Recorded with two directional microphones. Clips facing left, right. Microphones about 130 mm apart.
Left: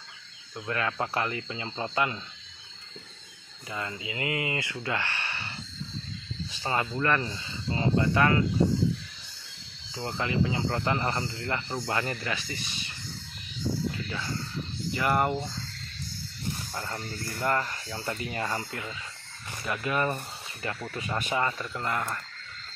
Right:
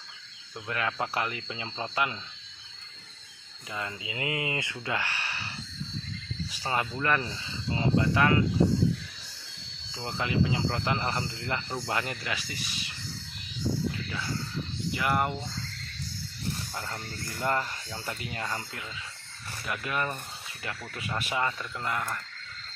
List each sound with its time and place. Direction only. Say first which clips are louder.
0.7 s speech: left 1 dB; 5° right (ahead or behind)
4.0 s speech: left 2 dB; 20° right (ahead or behind)
4.8 s a sound: even; 10° right (ahead or behind)
6.5 s speech: left 1 dB; 10° right (ahead or behind)
10.0 s speech: even; 5° right (ahead or behind)
15.0 s speech: left 2 dB; centre (ahead or behind)
17.4 s speech: left 1 dB; 10° right (ahead or behind)
21.2 s speech: left 1 dB; 5° right (ahead or behind)